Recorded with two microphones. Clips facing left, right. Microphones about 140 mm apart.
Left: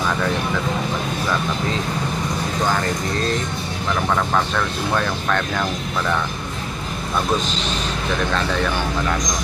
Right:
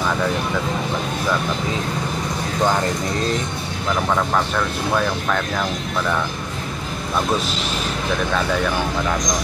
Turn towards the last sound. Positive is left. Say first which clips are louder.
# even
turn(degrees=-5)  # may be behind; listen again after turning